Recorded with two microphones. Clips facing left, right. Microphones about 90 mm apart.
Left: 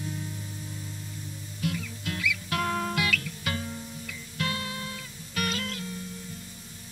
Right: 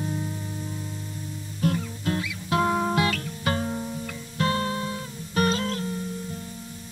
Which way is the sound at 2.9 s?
35° right (ahead or behind).